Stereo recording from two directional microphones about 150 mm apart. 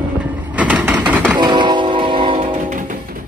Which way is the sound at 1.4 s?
30° right (ahead or behind).